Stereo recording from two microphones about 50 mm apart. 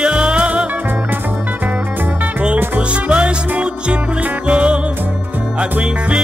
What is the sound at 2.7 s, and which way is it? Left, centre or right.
Music, right.